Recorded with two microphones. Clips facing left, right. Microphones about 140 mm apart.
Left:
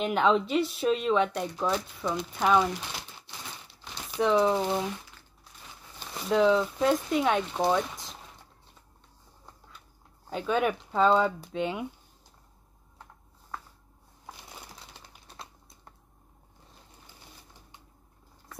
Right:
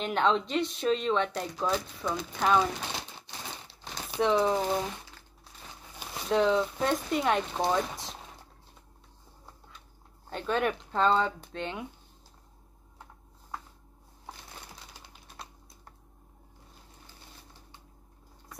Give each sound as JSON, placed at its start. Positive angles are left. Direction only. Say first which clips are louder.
{"t": 0.0, "sound": "speech", "louder": "left 2 dB", "side_deg": 5}
{"t": 2.9, "sound": "crumpling", "louder": "right 2 dB", "side_deg": -25}
{"t": 4.2, "sound": "speech", "louder": "left 2 dB", "side_deg": 0}
{"t": 6.1, "sound": "speech", "louder": "left 2 dB", "side_deg": 0}
{"t": 10.3, "sound": "speech", "louder": "left 2 dB", "side_deg": 5}
{"t": 15.0, "sound": "typing", "louder": "even", "side_deg": 0}